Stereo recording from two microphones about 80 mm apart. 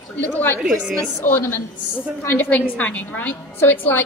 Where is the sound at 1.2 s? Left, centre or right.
Left.